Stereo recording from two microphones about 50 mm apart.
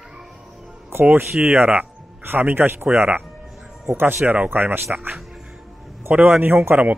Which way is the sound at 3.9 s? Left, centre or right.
Right.